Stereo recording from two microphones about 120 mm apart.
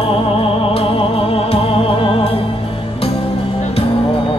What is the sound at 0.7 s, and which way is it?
Music, 55° left (ahead or behind).